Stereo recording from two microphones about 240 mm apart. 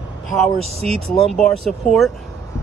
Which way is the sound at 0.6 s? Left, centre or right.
Right.